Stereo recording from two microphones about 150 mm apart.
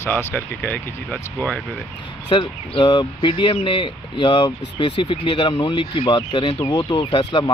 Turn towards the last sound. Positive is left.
turn(degrees=35)  # may be behind; listen again after turning